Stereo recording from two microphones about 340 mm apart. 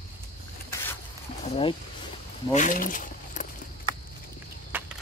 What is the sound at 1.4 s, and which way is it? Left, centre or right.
Speech, centre.